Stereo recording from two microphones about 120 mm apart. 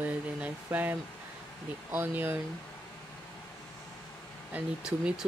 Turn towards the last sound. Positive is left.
turn(degrees=-5)  # may be behind; listen again after turning